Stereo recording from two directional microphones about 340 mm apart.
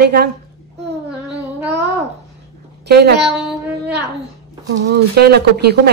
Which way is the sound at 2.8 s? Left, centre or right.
Right.